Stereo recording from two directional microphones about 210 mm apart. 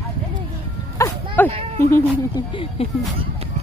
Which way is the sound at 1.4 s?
10° left (ahead or behind).